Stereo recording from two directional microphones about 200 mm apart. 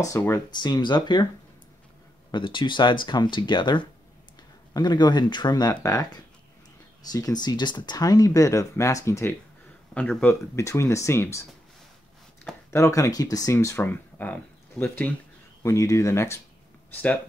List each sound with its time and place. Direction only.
0.0 s speech: 15° left (ahead or behind)
2.3 s speech: 25° left (ahead or behind)
12.7 s speech: 15° left (ahead or behind)